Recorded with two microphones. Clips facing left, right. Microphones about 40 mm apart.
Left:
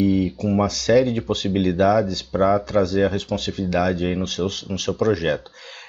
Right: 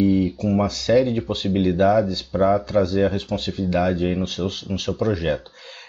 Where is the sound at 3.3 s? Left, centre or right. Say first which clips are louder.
Even; left.